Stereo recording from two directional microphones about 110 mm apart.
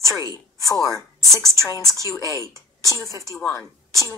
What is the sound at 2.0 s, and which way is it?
A woman's voice, 30° left (ahead or behind).